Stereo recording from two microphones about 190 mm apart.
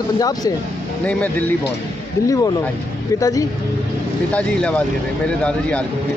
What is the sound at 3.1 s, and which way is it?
A man's voice, 15° left (ahead or behind).